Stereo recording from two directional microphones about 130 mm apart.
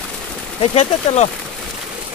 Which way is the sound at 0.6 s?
60° left (ahead or behind).